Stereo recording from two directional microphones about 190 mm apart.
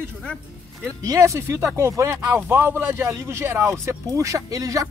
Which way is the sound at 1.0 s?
15° right (ahead or behind).